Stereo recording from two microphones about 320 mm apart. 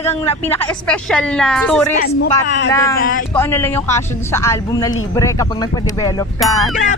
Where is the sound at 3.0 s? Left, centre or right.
Left.